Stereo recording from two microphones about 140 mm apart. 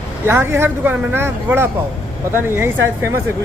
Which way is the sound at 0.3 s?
15° right (ahead or behind).